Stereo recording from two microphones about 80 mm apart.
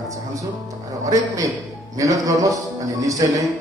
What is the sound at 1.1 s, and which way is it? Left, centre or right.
A man's voice, right.